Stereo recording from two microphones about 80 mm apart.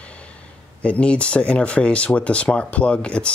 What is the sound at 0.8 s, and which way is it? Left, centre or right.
Speech, centre.